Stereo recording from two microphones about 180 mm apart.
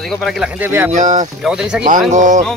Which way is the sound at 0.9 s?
45° right (ahead or behind).